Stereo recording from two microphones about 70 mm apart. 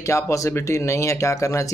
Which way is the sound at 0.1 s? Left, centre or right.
Left.